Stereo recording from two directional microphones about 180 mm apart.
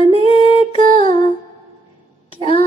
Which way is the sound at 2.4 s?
30° left (ahead or behind).